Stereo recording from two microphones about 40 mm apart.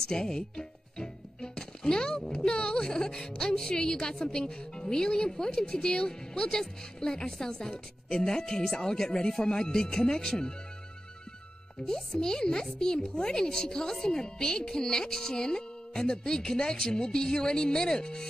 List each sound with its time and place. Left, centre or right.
0.0 s speech: centre
11.8 s speech: centre